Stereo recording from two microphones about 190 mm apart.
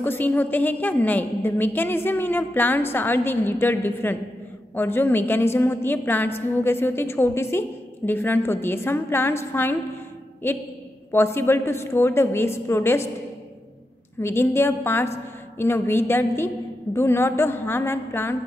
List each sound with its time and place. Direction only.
0.0 s a woman's voice: 10° left (ahead or behind)
11.1 s a woman's voice: 15° left (ahead or behind)
14.2 s a woman's voice: 15° left (ahead or behind)